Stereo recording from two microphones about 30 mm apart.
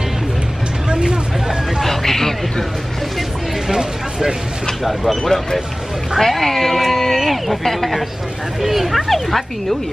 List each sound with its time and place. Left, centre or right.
0.8 s vehicle: right
1.8 s a sound: centre
3.6 s vehicle: centre
4.8 s speech: centre
5.2 s speech: centre
8.5 s speech: centre